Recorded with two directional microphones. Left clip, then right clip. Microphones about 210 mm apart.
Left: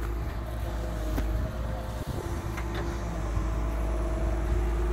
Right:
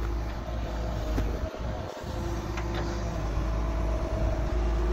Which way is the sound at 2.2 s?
30° right (ahead or behind).